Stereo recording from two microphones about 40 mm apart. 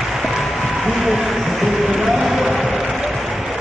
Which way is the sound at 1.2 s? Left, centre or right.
Centre.